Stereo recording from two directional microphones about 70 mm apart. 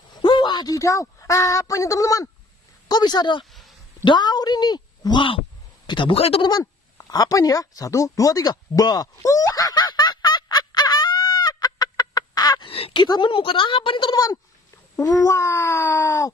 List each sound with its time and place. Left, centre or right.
0.1 s a sound: left
0.7 s speech: left
2.9 s a woman's voice: left
6.6 s a sound: left
14.0 s speech: left
15.0 s speech: left